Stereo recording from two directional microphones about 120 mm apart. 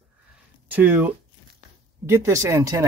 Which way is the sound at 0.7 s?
15° right (ahead or behind).